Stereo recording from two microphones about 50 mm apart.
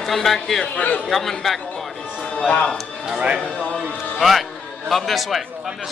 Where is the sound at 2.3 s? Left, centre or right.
Left.